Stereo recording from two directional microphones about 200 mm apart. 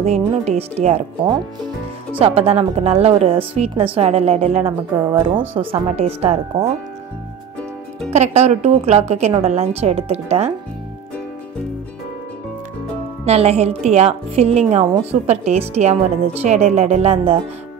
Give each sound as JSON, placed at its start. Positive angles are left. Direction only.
{"t": 0.0, "sound": "a woman's voice", "side_deg": -30}
{"t": 8.1, "sound": "a woman's voice", "side_deg": -35}
{"t": 13.2, "sound": "a woman's voice", "side_deg": -30}